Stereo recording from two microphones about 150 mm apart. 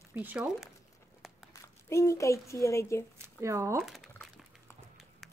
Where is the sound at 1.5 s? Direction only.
20° left (ahead or behind).